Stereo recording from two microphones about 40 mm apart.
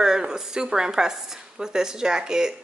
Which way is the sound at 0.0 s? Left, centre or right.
Centre.